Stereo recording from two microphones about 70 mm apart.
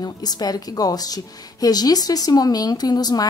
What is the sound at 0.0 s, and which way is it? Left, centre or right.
A woman's voice, left.